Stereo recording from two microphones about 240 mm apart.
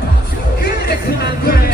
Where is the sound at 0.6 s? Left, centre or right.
Left.